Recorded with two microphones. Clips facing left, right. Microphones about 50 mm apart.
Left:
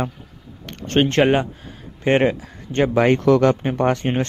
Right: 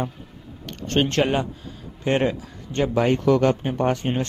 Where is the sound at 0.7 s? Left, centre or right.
Left.